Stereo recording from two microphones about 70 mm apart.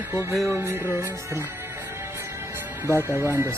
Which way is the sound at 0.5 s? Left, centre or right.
Right.